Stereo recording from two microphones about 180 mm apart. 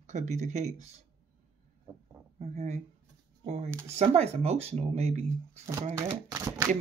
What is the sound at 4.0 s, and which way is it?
Speech, 35° right (ahead or behind).